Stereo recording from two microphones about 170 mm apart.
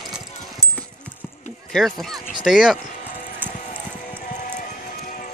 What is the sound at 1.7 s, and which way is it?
Speech, centre (ahead or behind).